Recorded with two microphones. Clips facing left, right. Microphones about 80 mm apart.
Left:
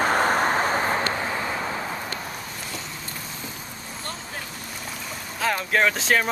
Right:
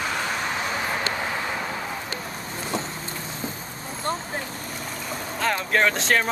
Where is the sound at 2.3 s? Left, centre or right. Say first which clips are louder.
Right 5 dB; right.